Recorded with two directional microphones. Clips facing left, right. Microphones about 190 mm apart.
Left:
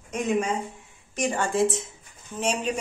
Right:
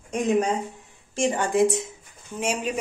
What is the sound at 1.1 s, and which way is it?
A woman's voice, 25° right (ahead or behind).